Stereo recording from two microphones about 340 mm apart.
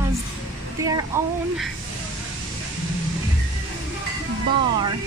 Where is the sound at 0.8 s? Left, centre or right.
Centre.